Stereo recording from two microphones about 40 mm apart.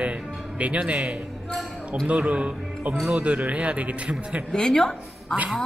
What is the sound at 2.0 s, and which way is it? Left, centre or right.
A man's voice, right.